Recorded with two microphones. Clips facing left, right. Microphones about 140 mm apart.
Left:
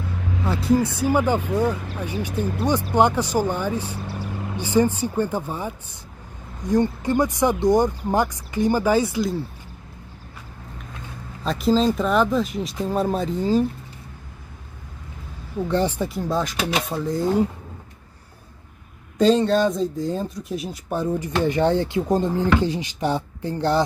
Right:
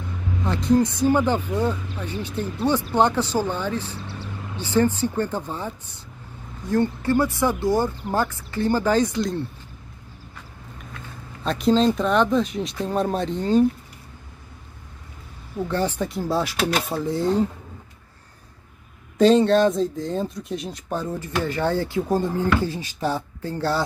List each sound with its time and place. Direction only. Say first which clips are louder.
0.5 s speech: right 1 dB; 5° left (ahead or behind)
11.4 s speech: even; centre (ahead or behind)
15.7 s speech: left 2 dB; 15° left (ahead or behind)
16.1 s speech: even; 5° right (ahead or behind)
19.1 s speech: right 2 dB; centre (ahead or behind)
20.9 s speech: left 3 dB; 15° left (ahead or behind)